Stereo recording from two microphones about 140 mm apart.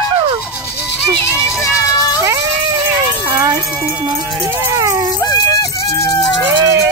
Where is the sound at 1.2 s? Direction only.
20° left (ahead or behind).